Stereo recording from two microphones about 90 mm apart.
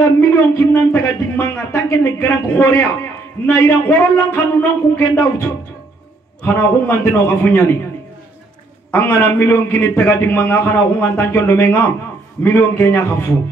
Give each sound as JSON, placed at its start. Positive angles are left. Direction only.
{"t": 0.6, "sound": "speech", "side_deg": 25}
{"t": 8.9, "sound": "speech", "side_deg": 25}